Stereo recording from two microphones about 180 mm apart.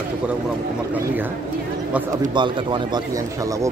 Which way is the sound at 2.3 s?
25° right (ahead or behind).